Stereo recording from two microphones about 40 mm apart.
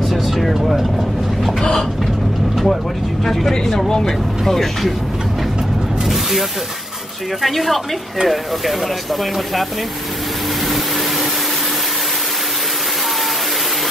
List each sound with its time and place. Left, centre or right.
0.1 s vehicle: centre
1.6 s speech: centre
2.5 s speech: centre
3.5 s speech: centre
6.0 s snake: centre
7.4 s speech: centre